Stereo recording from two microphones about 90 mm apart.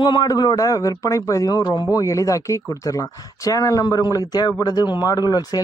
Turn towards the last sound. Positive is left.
turn(degrees=45)  # may be behind; listen again after turning